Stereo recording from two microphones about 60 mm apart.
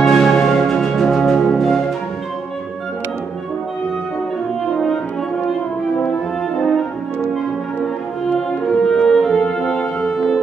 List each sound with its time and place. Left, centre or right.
0.0 s music: centre
4.7 s french horn: centre
6.6 s french horn: centre
8.3 s music: centre